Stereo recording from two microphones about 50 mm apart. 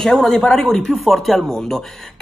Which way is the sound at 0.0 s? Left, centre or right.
Centre.